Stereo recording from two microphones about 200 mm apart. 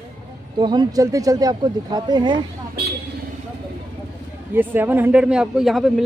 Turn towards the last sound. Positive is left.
turn(degrees=0)  # may be behind; listen again after turning